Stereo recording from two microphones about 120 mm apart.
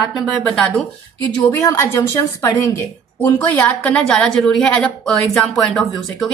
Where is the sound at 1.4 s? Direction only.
20° left (ahead or behind).